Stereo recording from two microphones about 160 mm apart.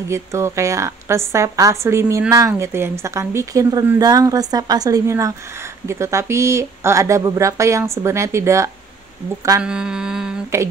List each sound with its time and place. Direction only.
0.1 s a woman's voice: 20° right (ahead or behind)
9.6 s mantra: 5° right (ahead or behind)